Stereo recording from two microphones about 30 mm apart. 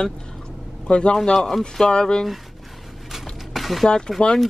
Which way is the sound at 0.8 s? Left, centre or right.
Left.